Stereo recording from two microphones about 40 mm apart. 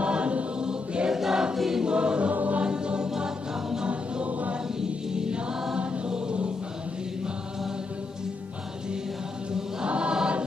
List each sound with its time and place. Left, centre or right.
0.0 s choir: right
0.7 s choir: centre
1.9 s choir: right
2.3 s music: right
2.6 s music: right
3.9 s choir: right
4.7 s music: centre
5.8 s choir: right
9.5 s choir: right